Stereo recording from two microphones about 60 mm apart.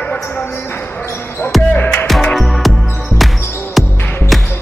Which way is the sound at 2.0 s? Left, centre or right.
Centre.